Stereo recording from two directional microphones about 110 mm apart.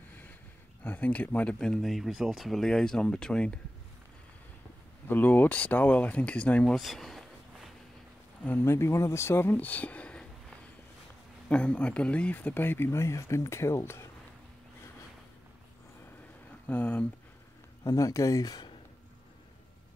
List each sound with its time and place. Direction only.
0.8 s speech: 15° left (ahead or behind)
5.0 s speech: 15° left (ahead or behind); by 7.7 s centre (ahead or behind)
8.5 s speech: 20° left (ahead or behind)
11.4 s speech: 10° left (ahead or behind)
16.6 s speech: 15° left (ahead or behind)
17.8 s speech: 30° left (ahead or behind)